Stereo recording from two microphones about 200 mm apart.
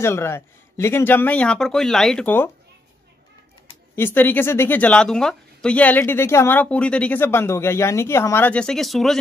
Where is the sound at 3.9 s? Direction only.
10° left (ahead or behind).